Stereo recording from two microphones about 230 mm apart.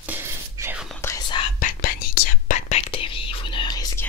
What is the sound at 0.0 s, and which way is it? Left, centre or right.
Whispering, centre.